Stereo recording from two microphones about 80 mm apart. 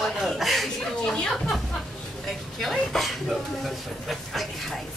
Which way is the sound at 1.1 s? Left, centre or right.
Centre.